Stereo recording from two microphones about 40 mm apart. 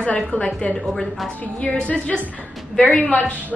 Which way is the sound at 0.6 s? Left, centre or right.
Left.